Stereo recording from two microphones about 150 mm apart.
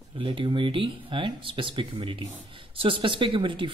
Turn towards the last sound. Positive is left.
turn(degrees=-35)  # may be behind; listen again after turning